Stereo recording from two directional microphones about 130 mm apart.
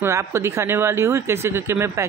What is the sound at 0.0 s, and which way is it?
Speech, 20° right (ahead or behind).